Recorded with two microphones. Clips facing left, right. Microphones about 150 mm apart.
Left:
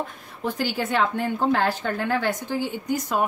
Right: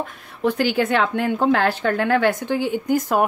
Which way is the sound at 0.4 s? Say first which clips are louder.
Right 7 dB; 70° right (ahead or behind).